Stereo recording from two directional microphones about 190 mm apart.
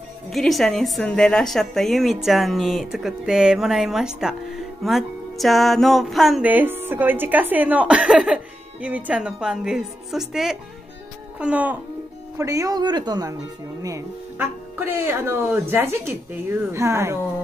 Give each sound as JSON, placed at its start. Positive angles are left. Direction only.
{"t": 0.3, "sound": "speech", "side_deg": 0}